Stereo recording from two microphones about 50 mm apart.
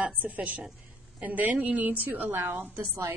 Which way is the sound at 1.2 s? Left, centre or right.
Right.